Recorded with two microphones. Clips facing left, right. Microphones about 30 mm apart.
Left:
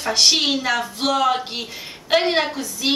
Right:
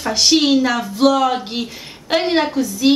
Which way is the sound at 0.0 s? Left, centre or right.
Centre.